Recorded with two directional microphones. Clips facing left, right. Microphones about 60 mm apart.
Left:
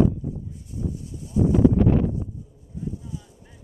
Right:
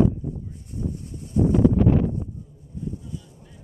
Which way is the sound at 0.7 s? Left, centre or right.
Right.